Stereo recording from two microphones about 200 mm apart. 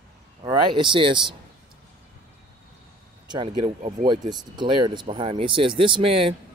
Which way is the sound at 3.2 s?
25° right (ahead or behind).